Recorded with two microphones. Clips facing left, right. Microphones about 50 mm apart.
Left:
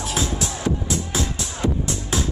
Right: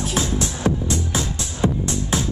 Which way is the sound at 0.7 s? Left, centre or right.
Right.